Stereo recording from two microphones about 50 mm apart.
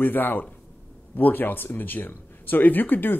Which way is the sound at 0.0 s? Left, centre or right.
Left.